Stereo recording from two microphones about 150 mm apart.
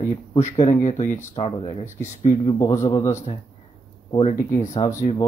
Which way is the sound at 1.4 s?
35° left (ahead or behind).